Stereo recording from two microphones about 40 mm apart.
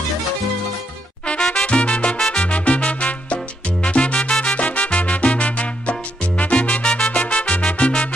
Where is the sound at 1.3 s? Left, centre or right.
Left.